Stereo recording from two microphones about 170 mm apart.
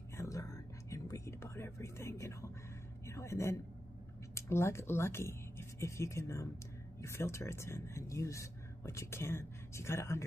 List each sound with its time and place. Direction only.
0.2 s whispering: 20° left (ahead or behind)
3.1 s speech: 15° left (ahead or behind)